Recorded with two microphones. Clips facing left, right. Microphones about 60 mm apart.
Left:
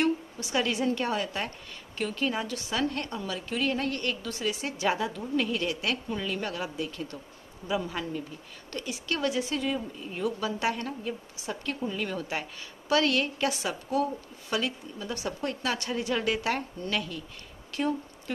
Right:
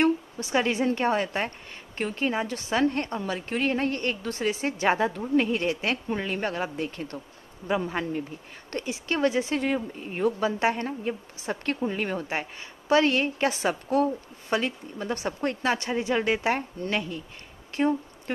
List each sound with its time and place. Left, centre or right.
0.0 s a woman's voice: right